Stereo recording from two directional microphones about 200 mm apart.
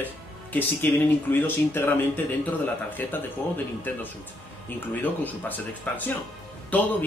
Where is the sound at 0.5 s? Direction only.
10° left (ahead or behind).